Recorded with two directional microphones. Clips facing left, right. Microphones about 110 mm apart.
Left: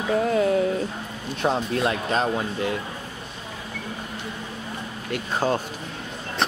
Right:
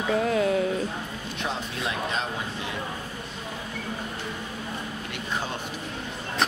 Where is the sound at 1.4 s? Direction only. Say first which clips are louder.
Left 9 dB; 40° left (ahead or behind).